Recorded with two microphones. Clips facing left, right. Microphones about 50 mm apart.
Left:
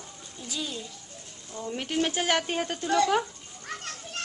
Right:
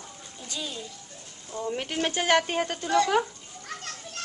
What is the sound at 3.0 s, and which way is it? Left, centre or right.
Speech, centre.